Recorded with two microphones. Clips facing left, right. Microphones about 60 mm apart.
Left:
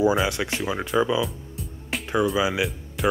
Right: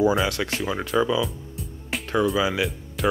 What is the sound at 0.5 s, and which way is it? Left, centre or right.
Speech, centre.